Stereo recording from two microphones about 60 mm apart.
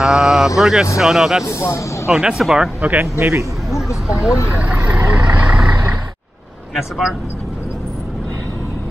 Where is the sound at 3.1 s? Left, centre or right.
Right.